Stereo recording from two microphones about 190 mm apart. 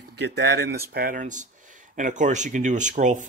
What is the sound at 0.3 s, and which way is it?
Speech, 60° right (ahead or behind).